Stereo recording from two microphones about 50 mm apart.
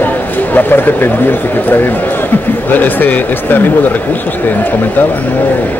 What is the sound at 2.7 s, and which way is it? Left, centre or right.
Speech, left.